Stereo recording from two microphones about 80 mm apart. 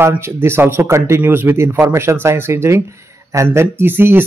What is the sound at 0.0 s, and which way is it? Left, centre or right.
Speech, right.